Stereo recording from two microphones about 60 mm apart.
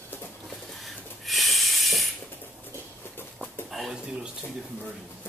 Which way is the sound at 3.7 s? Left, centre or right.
Centre.